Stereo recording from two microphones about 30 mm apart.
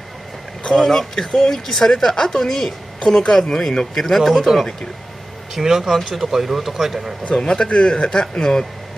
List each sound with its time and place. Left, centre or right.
0.7 s speech: centre
1.1 s speech: left
4.2 s speech: centre
5.5 s speech: centre
7.2 s speech: left